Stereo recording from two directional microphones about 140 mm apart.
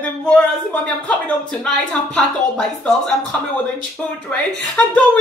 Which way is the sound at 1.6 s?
5° left (ahead or behind).